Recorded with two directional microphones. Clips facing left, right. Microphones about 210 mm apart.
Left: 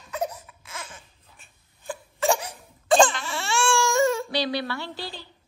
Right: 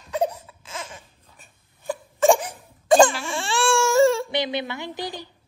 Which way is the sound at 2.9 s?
10° right (ahead or behind).